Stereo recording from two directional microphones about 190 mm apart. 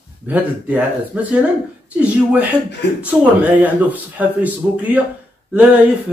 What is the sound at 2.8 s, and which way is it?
Speech, 60° left (ahead or behind).